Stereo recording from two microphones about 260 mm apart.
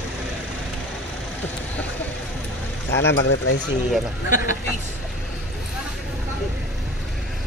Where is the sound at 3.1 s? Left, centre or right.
Left.